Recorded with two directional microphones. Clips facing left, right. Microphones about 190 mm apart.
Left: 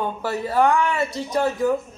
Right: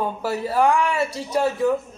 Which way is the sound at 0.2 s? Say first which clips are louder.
Left 1 dB; 5° right (ahead or behind).